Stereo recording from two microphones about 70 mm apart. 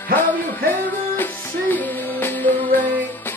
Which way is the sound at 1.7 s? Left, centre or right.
Left.